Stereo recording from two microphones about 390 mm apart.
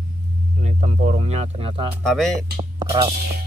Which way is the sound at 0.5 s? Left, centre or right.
Centre.